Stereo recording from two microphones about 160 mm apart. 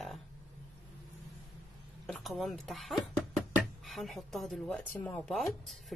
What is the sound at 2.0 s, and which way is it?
A woman's voice, 5° left (ahead or behind).